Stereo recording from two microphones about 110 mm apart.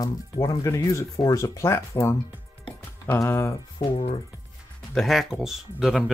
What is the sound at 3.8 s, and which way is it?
Speech, 50° left (ahead or behind).